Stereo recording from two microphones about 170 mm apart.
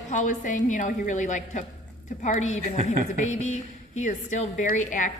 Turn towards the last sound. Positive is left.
turn(degrees=45)  # may be behind; listen again after turning